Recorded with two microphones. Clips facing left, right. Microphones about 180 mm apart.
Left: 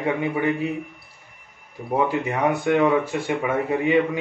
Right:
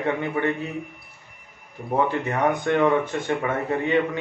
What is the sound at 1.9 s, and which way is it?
Speech, 10° left (ahead or behind).